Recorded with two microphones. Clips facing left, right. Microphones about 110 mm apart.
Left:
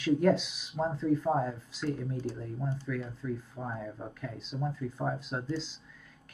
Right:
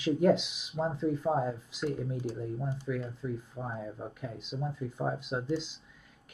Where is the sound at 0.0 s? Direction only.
15° right (ahead or behind).